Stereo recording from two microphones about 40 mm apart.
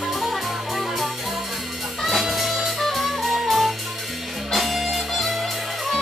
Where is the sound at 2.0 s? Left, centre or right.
Centre.